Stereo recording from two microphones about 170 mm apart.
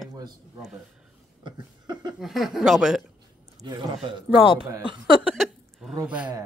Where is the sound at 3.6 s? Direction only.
25° right (ahead or behind).